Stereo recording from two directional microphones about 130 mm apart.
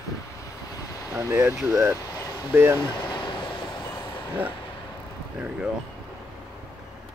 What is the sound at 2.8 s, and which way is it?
Vehicle, 35° left (ahead or behind).